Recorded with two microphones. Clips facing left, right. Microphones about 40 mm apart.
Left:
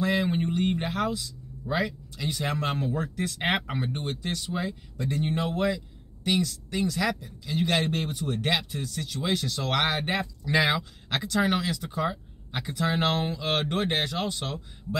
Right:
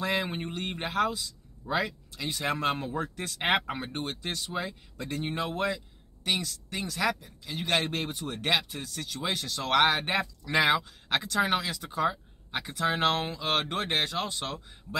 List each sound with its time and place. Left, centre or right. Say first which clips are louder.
0.0 s speech: left 4 dB; centre
5.5 s speech: left 3 dB; centre